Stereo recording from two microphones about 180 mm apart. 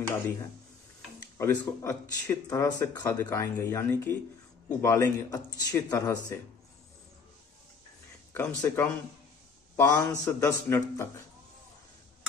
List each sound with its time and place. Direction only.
1.4 s speech: 15° left (ahead or behind)
8.3 s speech: 15° left (ahead or behind)